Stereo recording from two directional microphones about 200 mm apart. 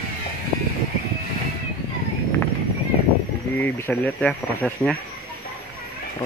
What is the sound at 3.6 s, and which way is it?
Speech, 10° left (ahead or behind).